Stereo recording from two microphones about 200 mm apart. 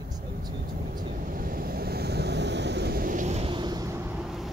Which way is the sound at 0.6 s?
45° right (ahead or behind).